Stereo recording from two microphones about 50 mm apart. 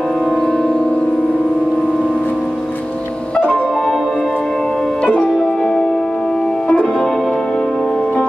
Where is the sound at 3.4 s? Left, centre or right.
Left.